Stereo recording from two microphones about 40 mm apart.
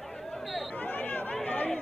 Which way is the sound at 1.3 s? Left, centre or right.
Left.